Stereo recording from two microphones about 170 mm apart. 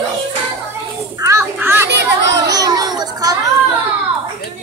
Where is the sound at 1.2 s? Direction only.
15° right (ahead or behind).